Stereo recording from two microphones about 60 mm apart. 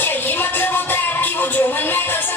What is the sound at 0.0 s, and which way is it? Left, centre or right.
Music, left.